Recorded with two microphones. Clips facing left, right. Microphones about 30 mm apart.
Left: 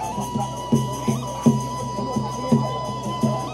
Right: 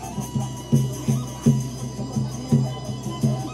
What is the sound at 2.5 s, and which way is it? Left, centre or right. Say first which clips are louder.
Music: left 2 dB; left.